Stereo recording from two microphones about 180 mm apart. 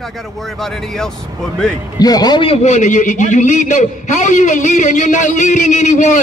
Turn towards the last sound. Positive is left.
turn(degrees=45)  # may be behind; listen again after turning